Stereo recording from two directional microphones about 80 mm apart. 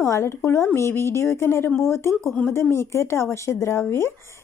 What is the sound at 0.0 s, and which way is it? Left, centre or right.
Speech, left.